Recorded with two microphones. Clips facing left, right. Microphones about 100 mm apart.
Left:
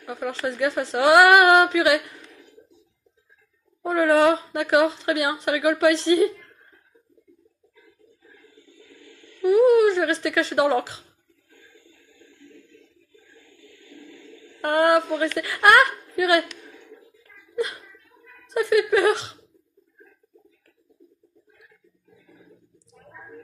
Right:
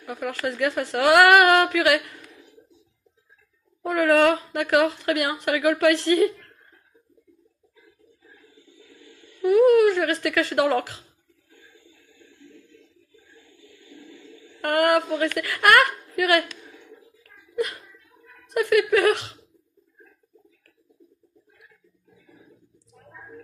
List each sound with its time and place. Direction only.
0.0 s a woman's voice: 20° left (ahead or behind)
2.2 s a sound: 15° right (ahead or behind)
3.8 s a woman's voice: 20° left (ahead or behind)
8.7 s a sound: 10° right (ahead or behind)
9.4 s a woman's voice: 20° left (ahead or behind)
13.8 s choir: 15° right (ahead or behind)
14.6 s a woman's voice: 20° left (ahead or behind)
16.6 s a sound: 15° left (ahead or behind)
18.5 s a woman's voice: 20° left (ahead or behind)